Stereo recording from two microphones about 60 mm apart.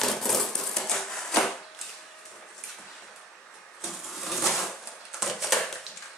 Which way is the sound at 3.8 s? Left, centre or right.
Centre.